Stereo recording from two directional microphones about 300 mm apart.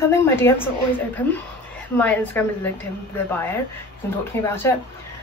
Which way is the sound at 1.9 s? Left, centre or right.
Centre.